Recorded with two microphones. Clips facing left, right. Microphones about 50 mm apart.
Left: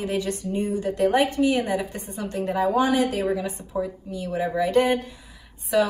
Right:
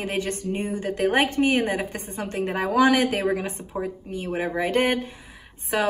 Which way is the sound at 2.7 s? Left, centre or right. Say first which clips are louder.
Right 3 dB; right.